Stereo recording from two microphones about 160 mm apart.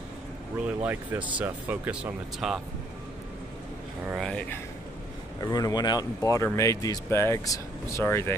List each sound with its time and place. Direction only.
0.7 s speech: 10° right (ahead or behind)
4.2 s speech: 5° left (ahead or behind)
5.4 s speech: 25° left (ahead or behind)